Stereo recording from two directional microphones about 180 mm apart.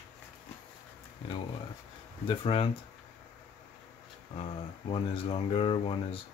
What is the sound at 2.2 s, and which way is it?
Speech, 30° left (ahead or behind).